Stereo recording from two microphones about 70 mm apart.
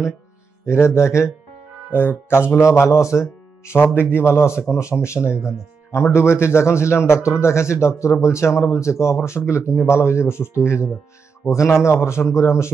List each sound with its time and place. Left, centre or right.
0.7 s a man's voice: left
1.9 s speech: left
2.8 s a man's voice: left
5.3 s speech: centre
5.9 s a man's voice: left